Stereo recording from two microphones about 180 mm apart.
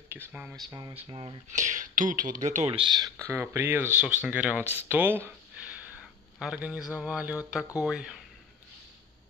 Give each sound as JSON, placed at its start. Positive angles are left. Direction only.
{"t": 0.1, "sound": "speech", "side_deg": -10}
{"t": 0.6, "sound": "speech", "side_deg": -25}
{"t": 1.5, "sound": "speech", "side_deg": -45}